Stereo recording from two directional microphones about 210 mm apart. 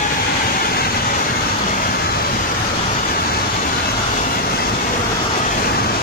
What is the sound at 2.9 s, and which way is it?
Vehicle, 40° left (ahead or behind).